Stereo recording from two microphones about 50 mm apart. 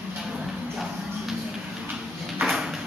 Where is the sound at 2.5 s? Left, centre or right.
Centre.